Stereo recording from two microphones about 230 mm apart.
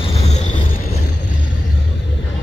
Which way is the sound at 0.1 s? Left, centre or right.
Left.